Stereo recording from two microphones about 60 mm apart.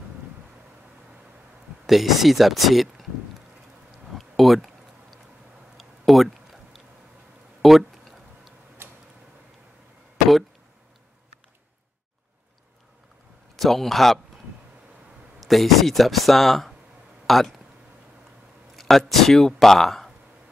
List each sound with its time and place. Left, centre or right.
1.9 s speech: centre
4.1 s a sound: centre
5.8 s tick-tock: centre
7.6 s a sound: centre
8.8 s tick-tock: right
13.6 s speech: centre
15.4 s speech: centre
18.8 s speech: centre